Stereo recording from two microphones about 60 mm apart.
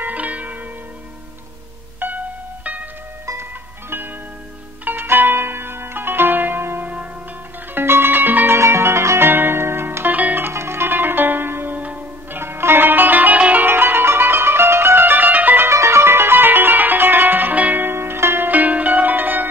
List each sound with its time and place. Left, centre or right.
0.0 s zither: right
2.0 s music: right
4.8 s zither: right
7.7 s music: right
8.5 s music: right
10.5 s music: right
12.4 s music: right
13.7 s music: right
15.7 s music: right
18.5 s zither: right